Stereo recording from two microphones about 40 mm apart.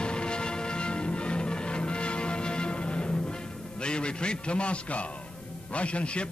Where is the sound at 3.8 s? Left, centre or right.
Left.